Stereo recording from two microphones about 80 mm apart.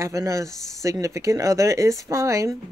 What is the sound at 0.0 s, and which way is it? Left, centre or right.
Speech, right.